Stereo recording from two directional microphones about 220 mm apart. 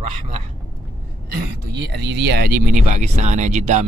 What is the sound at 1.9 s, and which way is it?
Speech, 50° right (ahead or behind).